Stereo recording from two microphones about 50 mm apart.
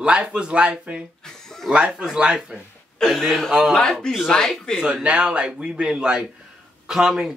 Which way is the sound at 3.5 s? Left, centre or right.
Centre.